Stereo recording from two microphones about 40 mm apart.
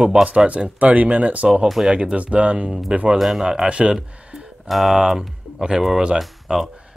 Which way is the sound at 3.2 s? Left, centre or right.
Centre.